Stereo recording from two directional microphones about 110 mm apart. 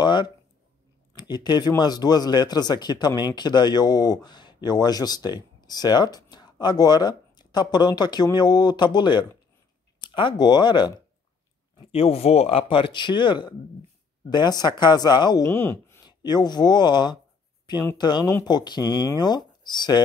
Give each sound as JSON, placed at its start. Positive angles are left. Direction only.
{"t": 0.0, "sound": "a sound", "side_deg": 45}
{"t": 1.1, "sound": "a man's voice", "side_deg": 40}
{"t": 11.9, "sound": "a man's voice", "side_deg": 65}
{"t": 15.4, "sound": "speech", "side_deg": 25}
{"t": 16.1, "sound": "speech", "side_deg": 40}